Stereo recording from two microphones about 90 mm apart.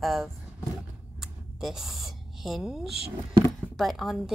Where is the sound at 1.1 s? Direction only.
5° right (ahead or behind).